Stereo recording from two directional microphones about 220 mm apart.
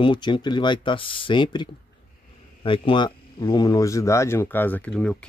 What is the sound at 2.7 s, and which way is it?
Speech, 25° left (ahead or behind).